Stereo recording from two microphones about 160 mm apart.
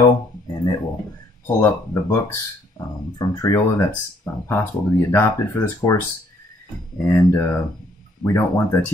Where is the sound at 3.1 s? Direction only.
25° left (ahead or behind).